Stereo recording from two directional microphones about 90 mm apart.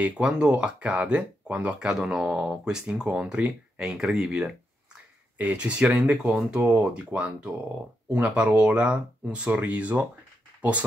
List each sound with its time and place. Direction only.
0.0 s speech: 10° right (ahead or behind)